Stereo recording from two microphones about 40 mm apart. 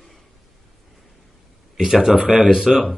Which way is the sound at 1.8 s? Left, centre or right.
Centre.